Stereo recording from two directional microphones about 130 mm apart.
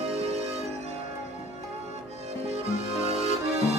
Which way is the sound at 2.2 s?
55° right (ahead or behind).